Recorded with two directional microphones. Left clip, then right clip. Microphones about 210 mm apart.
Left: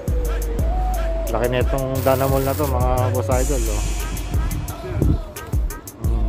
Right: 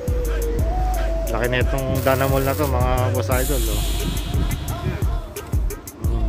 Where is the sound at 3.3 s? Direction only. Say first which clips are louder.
Left 1 dB; centre (ahead or behind).